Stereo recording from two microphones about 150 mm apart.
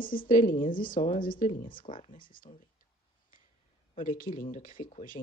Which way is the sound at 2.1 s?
65° left (ahead or behind).